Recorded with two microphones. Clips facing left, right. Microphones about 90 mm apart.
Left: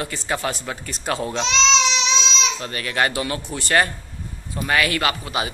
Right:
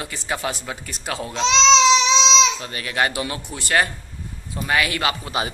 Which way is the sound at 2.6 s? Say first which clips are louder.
Left 1 dB; 15° right (ahead or behind).